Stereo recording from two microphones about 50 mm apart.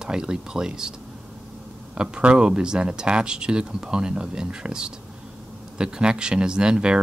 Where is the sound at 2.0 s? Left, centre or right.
Centre.